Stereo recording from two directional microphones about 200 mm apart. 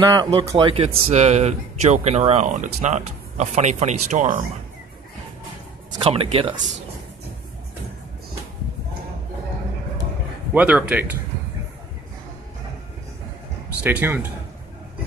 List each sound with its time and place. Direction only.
0.1 s speech: 20° right (ahead or behind)
6.0 s speech: 30° right (ahead or behind)
10.5 s speech: 10° right (ahead or behind)
13.8 s speech: 10° right (ahead or behind)